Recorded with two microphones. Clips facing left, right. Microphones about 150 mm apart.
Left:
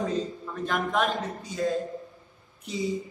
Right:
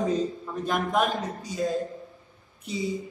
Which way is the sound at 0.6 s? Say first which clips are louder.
Right 1 dB; 10° right (ahead or behind).